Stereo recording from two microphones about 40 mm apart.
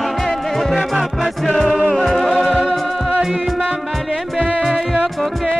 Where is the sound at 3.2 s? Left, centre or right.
Centre.